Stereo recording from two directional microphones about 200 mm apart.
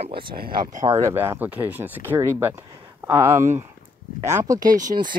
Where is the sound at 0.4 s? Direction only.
45° right (ahead or behind).